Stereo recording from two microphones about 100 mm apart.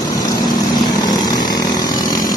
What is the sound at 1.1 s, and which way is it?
Vehicle, 40° left (ahead or behind).